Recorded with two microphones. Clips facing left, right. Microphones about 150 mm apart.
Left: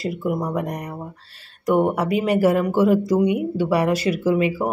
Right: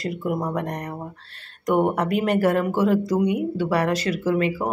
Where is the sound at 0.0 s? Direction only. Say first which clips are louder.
Left 2 dB; 5° left (ahead or behind).